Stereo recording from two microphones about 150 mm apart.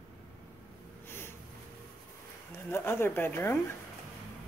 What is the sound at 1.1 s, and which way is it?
Snort, 15° left (ahead or behind).